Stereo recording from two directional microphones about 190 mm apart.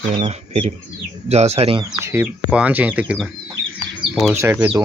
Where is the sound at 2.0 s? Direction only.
15° right (ahead or behind).